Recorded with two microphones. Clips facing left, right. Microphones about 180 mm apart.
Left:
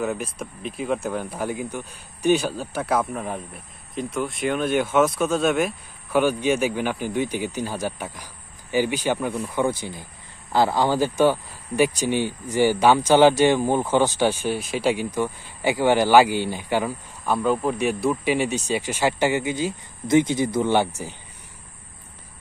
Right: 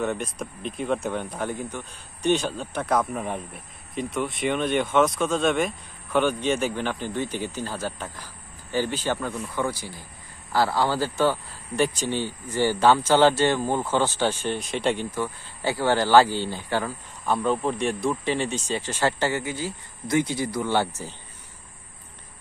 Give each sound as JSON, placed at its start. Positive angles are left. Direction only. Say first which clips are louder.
{"t": 0.0, "sound": "speech", "louder": "left 1 dB", "side_deg": 5}
{"t": 17.3, "sound": "speech", "louder": "left 2 dB", "side_deg": 5}